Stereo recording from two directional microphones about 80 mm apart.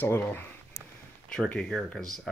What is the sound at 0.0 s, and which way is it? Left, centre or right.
Speech, left.